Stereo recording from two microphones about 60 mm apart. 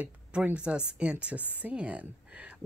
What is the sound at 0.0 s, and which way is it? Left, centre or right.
A woman's voice, right.